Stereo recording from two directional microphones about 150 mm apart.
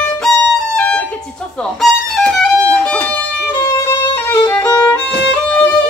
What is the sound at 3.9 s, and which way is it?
Violin, 15° left (ahead or behind).